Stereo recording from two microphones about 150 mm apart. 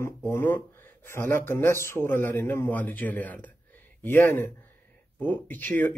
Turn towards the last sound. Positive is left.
turn(degrees=15)  # may be behind; listen again after turning